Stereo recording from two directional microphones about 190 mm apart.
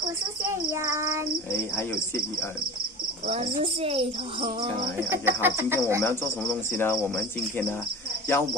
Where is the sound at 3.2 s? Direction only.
30° right (ahead or behind).